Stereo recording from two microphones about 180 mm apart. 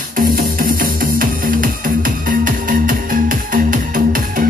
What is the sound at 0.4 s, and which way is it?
Music, 50° right (ahead or behind).